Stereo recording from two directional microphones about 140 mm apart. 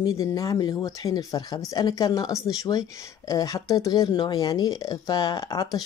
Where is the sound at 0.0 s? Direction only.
25° left (ahead or behind).